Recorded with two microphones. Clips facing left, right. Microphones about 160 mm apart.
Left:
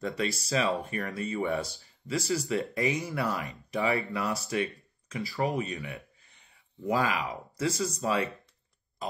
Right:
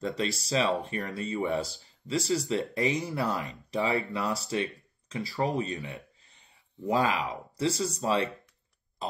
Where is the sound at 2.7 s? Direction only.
20° right (ahead or behind).